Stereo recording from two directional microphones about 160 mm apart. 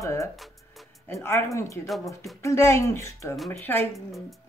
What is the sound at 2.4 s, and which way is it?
Speech, 20° left (ahead or behind).